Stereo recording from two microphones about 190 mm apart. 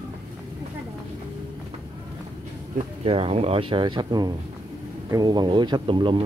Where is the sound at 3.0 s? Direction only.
30° right (ahead or behind).